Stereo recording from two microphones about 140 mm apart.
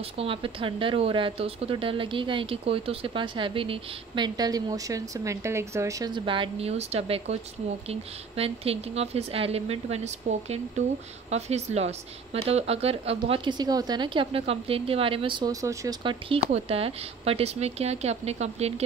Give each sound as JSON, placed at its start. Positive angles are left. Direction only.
{"t": 0.2, "sound": "speech", "side_deg": -40}
{"t": 15.6, "sound": "speech", "side_deg": -20}
{"t": 16.0, "sound": "speech", "side_deg": -40}